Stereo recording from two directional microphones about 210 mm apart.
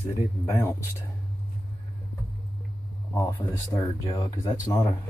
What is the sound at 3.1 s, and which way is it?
Speech, 10° left (ahead or behind).